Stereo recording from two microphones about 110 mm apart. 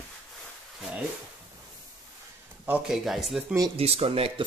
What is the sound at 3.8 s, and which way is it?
Speech, 65° right (ahead or behind).